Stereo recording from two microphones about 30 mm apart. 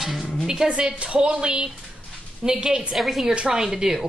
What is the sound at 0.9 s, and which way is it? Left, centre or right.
Speech, right.